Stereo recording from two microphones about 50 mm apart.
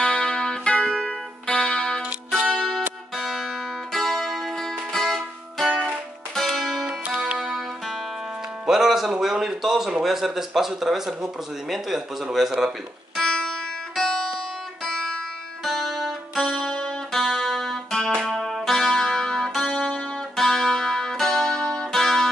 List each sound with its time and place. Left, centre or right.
0.0 s music: centre
8.6 s speech: centre
13.2 s music: centre
15.6 s music: centre
16.6 s music: centre